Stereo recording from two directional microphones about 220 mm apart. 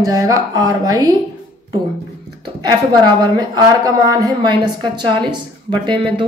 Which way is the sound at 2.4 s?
20° right (ahead or behind).